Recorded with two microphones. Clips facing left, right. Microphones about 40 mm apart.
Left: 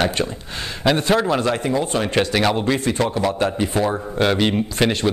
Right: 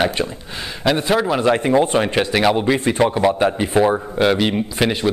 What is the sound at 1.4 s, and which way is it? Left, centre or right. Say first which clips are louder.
Speech: right 5 dB; right.